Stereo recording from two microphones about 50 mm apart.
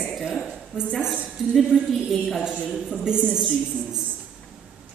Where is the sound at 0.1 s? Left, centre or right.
Centre.